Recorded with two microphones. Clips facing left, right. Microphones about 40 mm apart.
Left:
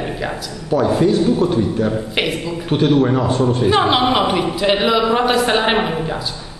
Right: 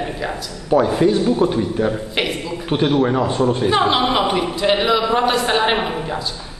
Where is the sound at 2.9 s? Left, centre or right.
Centre.